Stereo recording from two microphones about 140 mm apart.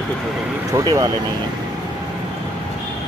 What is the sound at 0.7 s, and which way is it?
Speech, 20° right (ahead or behind).